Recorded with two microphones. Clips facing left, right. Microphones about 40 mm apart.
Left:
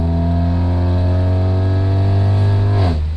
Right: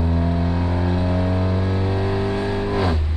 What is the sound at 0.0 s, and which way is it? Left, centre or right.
Vehicle, right.